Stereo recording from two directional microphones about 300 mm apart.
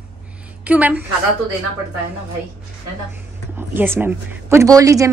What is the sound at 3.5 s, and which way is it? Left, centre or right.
A woman's voice, centre.